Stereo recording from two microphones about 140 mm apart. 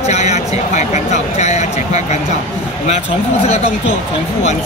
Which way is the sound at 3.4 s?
50° left (ahead or behind).